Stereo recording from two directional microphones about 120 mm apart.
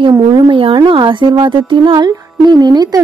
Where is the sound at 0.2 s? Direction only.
45° right (ahead or behind).